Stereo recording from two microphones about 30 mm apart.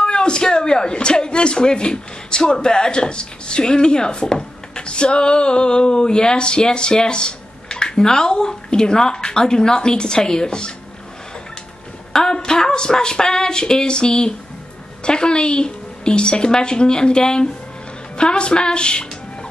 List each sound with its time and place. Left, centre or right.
0.0 s speech: left
12.1 s a sound: centre
12.4 s a woman's voice: left